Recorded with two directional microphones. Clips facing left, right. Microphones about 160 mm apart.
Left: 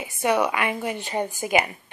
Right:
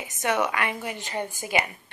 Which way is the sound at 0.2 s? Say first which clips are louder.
Left 3 dB; 15° left (ahead or behind).